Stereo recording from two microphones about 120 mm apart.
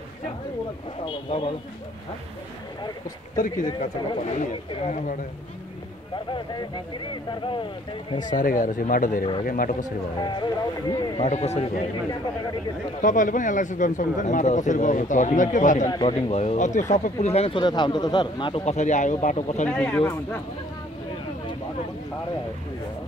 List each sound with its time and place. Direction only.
1.0 s a man's voice: 50° left (ahead or behind)
3.3 s speech: 90° left
7.2 s a man's voice: 45° left (ahead or behind)
8.3 s speech: 90° left
10.2 s a man's voice: 40° left (ahead or behind)
11.1 s speech: 65° left (ahead or behind)
13.0 s speech: 90° left
16.1 s speech: 60° left (ahead or behind)
17.6 s a man's voice: 40° left (ahead or behind); by 19.7 s 75° left (ahead or behind)
19.7 s speech: 10° left (ahead or behind)